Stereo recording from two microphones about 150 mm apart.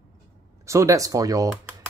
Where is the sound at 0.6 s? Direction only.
20° right (ahead or behind).